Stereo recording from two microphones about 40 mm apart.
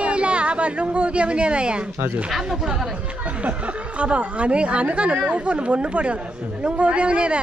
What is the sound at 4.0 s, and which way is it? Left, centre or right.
Speech, right.